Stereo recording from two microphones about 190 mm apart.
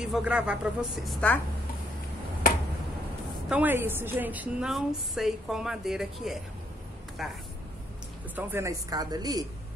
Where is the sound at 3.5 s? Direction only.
10° right (ahead or behind).